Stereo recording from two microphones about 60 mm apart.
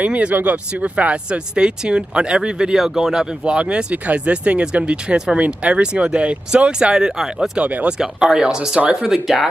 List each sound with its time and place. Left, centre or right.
0.0 s speech: right
7.6 s speech: right
8.0 s speech: centre